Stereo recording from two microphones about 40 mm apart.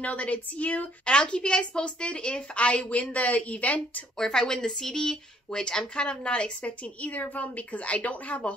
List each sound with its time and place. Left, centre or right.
0.0 s a woman's voice: left
1.0 s a woman's voice: left
4.2 s speech: centre
6.6 s a woman's voice: left